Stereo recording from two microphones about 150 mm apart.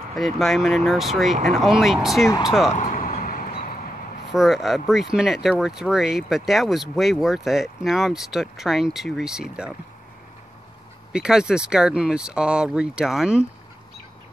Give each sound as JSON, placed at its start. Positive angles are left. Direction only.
{"t": 0.1, "sound": "speech", "side_deg": 0}
{"t": 2.7, "sound": "vehicle", "side_deg": 60}
{"t": 4.3, "sound": "speech", "side_deg": 0}
{"t": 11.1, "sound": "speech", "side_deg": -5}